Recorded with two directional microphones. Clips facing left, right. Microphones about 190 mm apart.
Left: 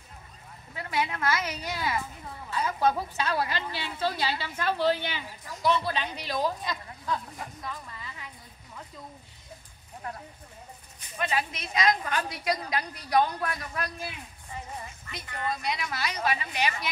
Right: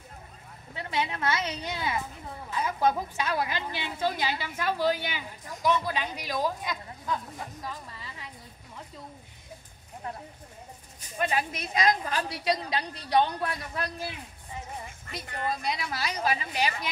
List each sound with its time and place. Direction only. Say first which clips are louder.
0.7 s a woman's voice: left 1 dB; 25° right (ahead or behind)
7.6 s a woman's voice: even; 30° right (ahead or behind)
11.0 s speech: right 1 dB; 45° right (ahead or behind)
12.0 s a woman's voice: even; 30° right (ahead or behind)
15.0 s a woman's voice: right 1 dB; 40° right (ahead or behind)